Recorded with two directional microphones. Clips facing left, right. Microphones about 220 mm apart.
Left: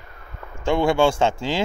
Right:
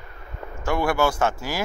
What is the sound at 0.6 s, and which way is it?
Speech, 25° left (ahead or behind).